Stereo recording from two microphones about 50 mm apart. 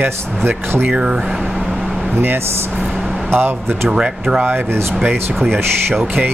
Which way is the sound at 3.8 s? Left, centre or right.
Centre.